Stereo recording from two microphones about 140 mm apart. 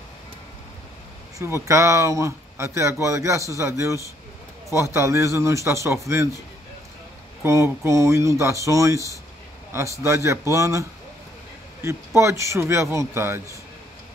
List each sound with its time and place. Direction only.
1.4 s speech: 20° right (ahead or behind)
7.4 s speech: 20° right (ahead or behind)